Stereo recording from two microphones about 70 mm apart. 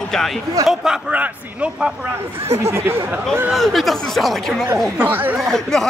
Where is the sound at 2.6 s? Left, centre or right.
Right.